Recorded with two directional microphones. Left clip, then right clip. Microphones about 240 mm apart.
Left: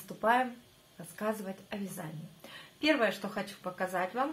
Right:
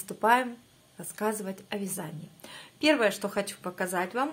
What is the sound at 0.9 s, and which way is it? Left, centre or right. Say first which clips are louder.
A woman's voice: right 4 dB; right.